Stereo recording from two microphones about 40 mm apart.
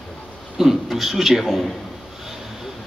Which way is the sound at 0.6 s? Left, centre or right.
Centre.